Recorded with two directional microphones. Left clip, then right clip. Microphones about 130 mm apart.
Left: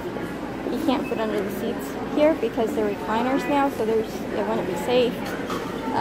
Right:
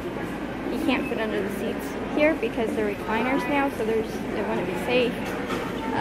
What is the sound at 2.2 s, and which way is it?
A woman's voice, 20° left (ahead or behind).